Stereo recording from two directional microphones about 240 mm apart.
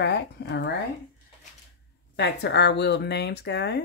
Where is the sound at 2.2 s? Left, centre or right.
Left.